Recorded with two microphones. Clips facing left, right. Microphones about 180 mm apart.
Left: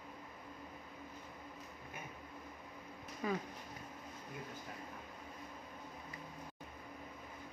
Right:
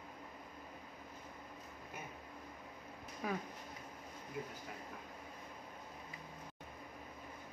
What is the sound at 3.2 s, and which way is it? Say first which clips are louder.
Speech: left 2 dB; 5° right (ahead or behind).